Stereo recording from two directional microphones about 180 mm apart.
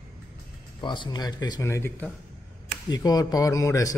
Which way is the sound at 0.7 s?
25° left (ahead or behind).